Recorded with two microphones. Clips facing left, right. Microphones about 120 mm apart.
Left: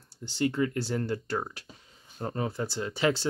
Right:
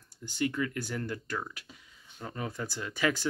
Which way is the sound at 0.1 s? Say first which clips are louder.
Left 3 dB; 30° left (ahead or behind).